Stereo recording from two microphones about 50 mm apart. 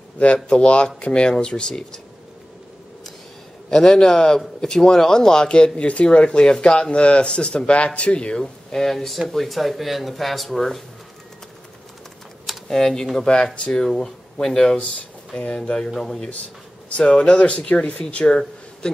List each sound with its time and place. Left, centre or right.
0.2 s speech: left
3.7 s speech: centre
8.4 s speech: centre
12.6 s speech: centre
16.9 s speech: left